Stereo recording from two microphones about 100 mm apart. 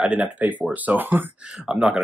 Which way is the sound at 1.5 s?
5° right (ahead or behind).